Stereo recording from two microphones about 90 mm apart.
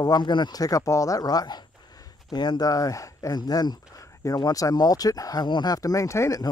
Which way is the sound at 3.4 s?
50° left (ahead or behind).